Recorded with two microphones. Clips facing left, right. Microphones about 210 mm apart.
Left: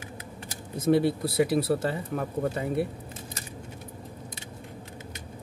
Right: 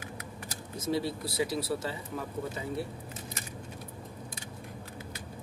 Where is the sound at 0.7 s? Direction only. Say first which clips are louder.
Left 9 dB; 60° left (ahead or behind).